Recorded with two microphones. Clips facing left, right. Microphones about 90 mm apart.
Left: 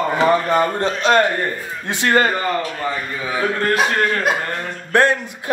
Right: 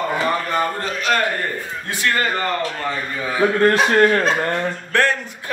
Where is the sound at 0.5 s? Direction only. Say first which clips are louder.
Left 4 dB; 25° left (ahead or behind).